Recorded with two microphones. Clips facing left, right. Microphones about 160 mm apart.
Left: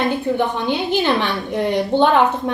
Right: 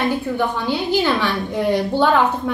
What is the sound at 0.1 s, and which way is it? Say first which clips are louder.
A woman's voice: left 1 dB; 20° left (ahead or behind).